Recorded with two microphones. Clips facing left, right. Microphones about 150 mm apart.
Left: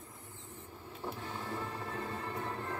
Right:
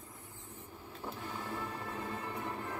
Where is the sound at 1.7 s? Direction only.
15° right (ahead or behind).